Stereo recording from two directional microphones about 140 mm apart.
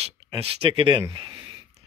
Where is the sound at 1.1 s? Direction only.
35° right (ahead or behind).